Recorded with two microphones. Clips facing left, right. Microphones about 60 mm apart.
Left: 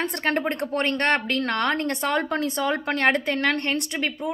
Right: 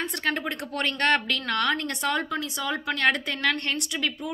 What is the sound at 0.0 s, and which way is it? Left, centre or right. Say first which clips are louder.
A woman's voice: left 4 dB; left.